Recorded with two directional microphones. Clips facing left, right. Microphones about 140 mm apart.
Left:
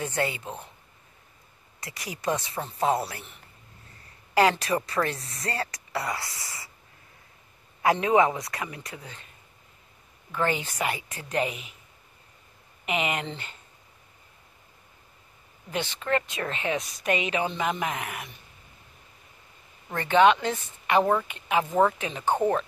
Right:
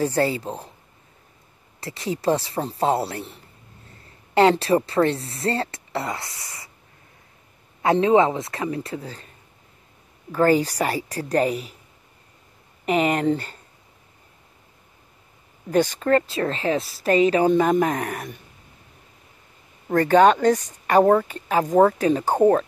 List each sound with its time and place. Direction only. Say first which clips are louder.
0.0 s a woman's voice: right 8 dB; 35° right (ahead or behind)
1.8 s a woman's voice: right 11 dB; 30° right (ahead or behind)
7.8 s a man's voice: right 4 dB; 25° right (ahead or behind)
10.3 s a woman's voice: right 10 dB; 40° right (ahead or behind)
12.8 s a woman's voice: right 9 dB; 40° right (ahead or behind)
15.7 s a woman's voice: right 9 dB; 40° right (ahead or behind)
19.9 s a woman's voice: right 5 dB; 40° right (ahead or behind)